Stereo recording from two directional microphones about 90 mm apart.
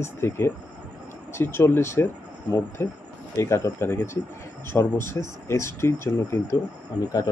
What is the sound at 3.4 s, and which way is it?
Speech, 30° left (ahead or behind).